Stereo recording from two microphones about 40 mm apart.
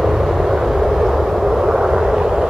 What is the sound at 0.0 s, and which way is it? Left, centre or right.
Vehicle, centre.